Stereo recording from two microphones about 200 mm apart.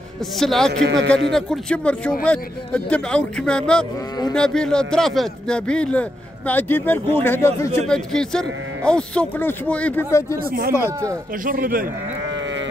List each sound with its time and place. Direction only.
0.4 s speech: centre (ahead or behind)
0.8 s a man's voice: 60° right (ahead or behind)
1.3 s speech: 5° left (ahead or behind)
10.4 s a man's voice: 45° right (ahead or behind)